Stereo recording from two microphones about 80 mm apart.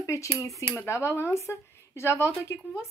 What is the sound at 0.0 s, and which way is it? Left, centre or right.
Speech, left.